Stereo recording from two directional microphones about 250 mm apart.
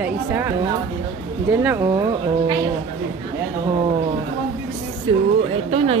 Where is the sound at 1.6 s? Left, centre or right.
Centre.